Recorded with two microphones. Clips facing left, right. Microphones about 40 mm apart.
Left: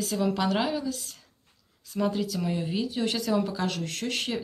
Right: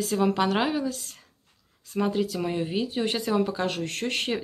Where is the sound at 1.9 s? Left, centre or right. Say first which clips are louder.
Right 2 dB; right.